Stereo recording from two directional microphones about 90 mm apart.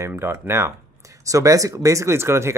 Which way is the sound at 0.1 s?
25° right (ahead or behind).